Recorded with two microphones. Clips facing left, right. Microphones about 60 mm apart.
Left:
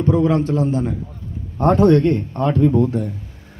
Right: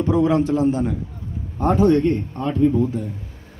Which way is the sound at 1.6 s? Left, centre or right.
Left.